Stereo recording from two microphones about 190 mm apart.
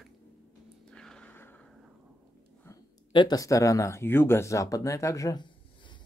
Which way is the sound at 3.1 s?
20° left (ahead or behind).